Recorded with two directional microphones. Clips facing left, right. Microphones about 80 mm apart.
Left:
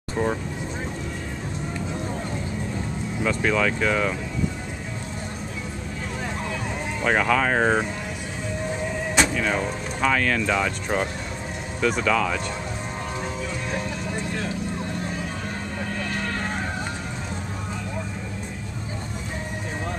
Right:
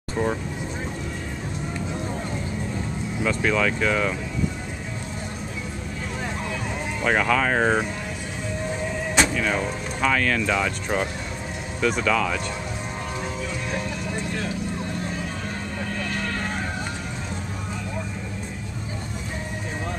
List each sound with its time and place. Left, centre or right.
0.2 s vehicle: centre
3.3 s speech: centre
7.0 s speech: centre
9.1 s speech: centre
16.1 s a sound: left